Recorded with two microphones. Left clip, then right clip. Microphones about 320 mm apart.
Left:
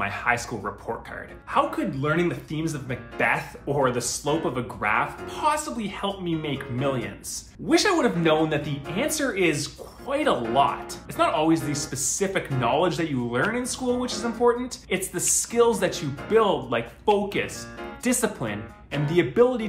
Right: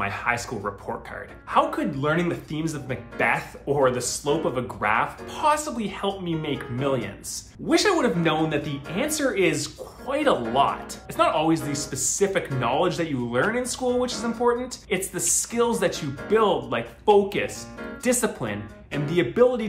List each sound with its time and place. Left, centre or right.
0.0 s speech: centre
1.5 s speech: centre